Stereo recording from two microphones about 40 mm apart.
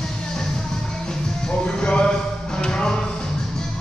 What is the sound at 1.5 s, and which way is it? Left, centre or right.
Music, left.